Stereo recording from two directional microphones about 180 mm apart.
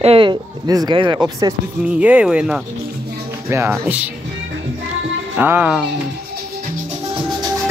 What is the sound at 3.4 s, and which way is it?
Speech, 15° right (ahead or behind).